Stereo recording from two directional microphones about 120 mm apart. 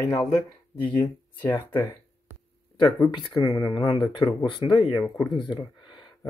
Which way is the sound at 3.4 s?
25° left (ahead or behind).